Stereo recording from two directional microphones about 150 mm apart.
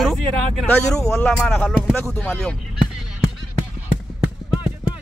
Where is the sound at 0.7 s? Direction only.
15° left (ahead or behind).